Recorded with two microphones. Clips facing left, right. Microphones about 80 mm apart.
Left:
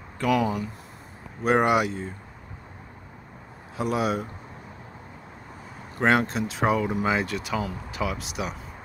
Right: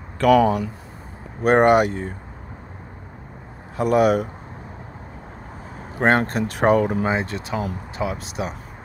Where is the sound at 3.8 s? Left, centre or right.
Right.